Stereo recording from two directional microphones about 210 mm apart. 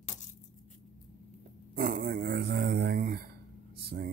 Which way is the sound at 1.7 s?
40° right (ahead or behind).